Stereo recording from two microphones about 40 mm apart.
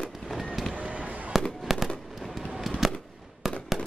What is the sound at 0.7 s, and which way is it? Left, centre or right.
Fireworks, right.